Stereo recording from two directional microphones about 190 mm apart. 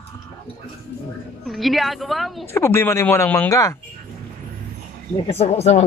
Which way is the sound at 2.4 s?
15° left (ahead or behind).